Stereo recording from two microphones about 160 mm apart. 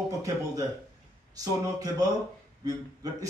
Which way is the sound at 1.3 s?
25° right (ahead or behind).